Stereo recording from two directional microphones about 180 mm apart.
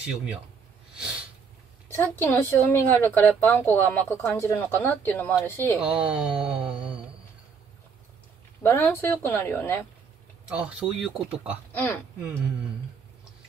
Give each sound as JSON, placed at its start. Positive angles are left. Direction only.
{"t": 0.0, "sound": "speech", "side_deg": -5}
{"t": 1.9, "sound": "a woman's voice", "side_deg": 10}
{"t": 5.8, "sound": "speech", "side_deg": -5}
{"t": 8.6, "sound": "a woman's voice", "side_deg": 15}
{"t": 10.5, "sound": "speech", "side_deg": -5}
{"t": 11.7, "sound": "speech", "side_deg": 10}